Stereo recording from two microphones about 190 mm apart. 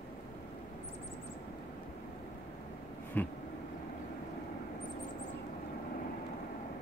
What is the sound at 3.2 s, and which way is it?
Vehicle, 10° left (ahead or behind).